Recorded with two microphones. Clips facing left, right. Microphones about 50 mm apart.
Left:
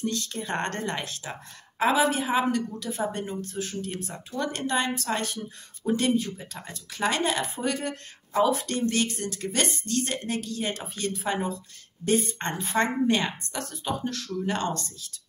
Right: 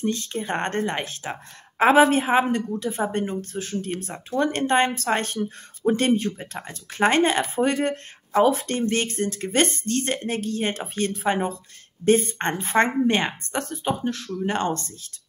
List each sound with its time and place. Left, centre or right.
0.0 s speech: right